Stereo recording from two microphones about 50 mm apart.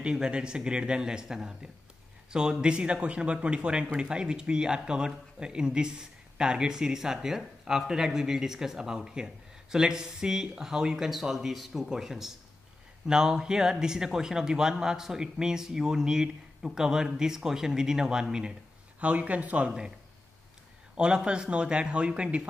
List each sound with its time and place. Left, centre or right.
0.0 s speech: centre
18.9 s speech: right
20.9 s speech: centre